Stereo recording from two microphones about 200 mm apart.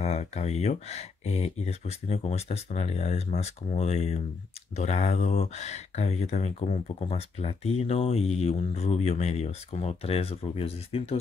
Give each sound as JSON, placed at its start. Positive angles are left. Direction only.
{"t": 0.0, "sound": "speech", "side_deg": 35}